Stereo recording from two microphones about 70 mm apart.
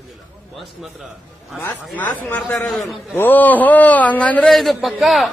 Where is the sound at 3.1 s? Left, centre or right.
Left.